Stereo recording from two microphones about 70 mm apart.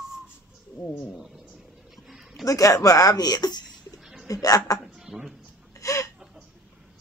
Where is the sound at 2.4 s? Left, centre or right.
Left.